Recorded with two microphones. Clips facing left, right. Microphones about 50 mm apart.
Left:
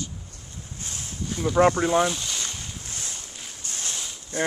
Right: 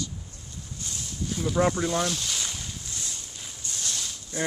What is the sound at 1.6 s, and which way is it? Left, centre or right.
Speech, left.